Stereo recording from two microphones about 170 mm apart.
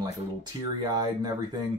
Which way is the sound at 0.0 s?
25° right (ahead or behind).